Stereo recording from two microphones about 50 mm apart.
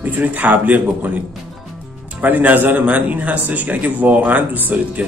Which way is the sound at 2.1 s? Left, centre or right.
Right.